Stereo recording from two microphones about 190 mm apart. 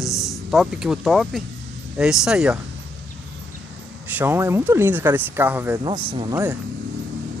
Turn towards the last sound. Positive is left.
turn(degrees=-25)  # may be behind; listen again after turning